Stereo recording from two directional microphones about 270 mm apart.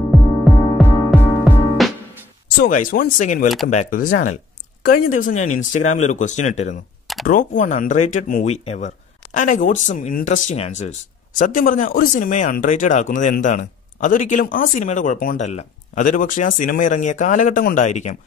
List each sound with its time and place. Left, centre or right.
0.1 s music: centre
2.6 s speech: left
5.3 s speech: left
5.6 s speech: left